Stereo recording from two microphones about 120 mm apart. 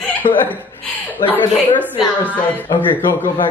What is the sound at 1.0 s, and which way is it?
Speech, 15° left (ahead or behind).